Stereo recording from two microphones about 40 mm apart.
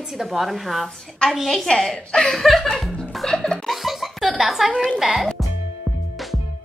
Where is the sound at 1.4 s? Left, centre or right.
Centre.